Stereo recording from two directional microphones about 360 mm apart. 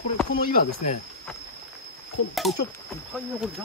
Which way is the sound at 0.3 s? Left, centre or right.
Left.